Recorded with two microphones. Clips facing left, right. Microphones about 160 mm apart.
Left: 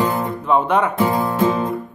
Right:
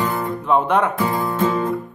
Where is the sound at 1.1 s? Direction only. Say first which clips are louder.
Left 2 dB; 25° left (ahead or behind).